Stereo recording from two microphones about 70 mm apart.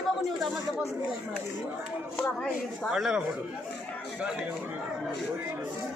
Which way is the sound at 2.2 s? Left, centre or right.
Centre.